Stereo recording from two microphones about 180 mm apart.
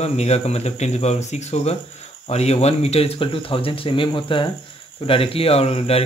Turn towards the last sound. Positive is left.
turn(degrees=35)  # may be behind; listen again after turning